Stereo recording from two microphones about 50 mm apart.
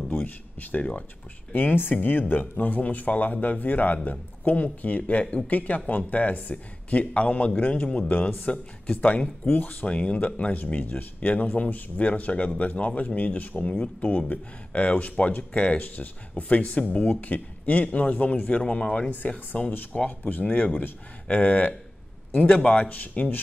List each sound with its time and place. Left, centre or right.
0.1 s speech: left
19.0 s speech: left